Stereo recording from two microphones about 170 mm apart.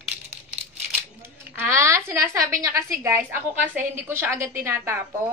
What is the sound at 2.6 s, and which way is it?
A woman's voice, 15° right (ahead or behind).